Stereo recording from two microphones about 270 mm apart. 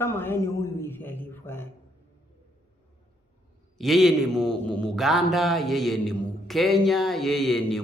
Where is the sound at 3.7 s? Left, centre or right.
Centre.